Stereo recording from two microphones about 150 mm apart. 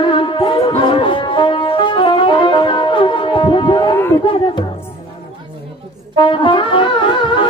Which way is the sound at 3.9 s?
20° left (ahead or behind).